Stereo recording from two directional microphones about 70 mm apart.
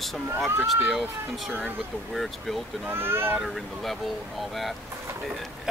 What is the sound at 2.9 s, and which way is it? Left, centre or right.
Speech, right.